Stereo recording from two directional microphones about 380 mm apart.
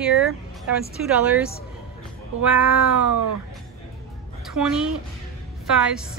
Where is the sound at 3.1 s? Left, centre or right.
Right.